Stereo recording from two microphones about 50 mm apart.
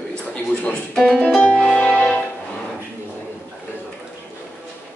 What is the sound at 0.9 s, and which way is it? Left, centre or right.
Speech, centre.